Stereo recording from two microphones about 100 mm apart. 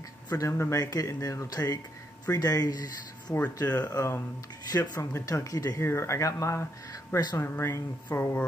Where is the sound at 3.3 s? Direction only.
20° left (ahead or behind).